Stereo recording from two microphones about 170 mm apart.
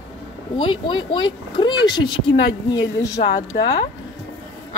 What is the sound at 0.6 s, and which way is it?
Speech, 30° left (ahead or behind).